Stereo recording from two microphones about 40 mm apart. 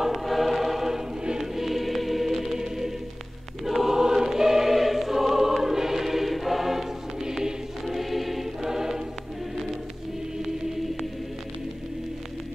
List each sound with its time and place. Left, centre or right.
0.0 s choir: centre
1.2 s choir: centre
1.6 s music: centre
3.6 s choir: centre